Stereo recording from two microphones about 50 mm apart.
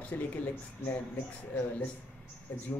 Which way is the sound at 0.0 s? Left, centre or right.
Left.